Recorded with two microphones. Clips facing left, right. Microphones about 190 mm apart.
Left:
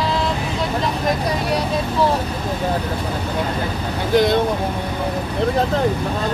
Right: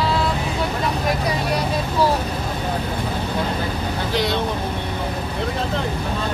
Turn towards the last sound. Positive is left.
turn(degrees=50)  # may be behind; listen again after turning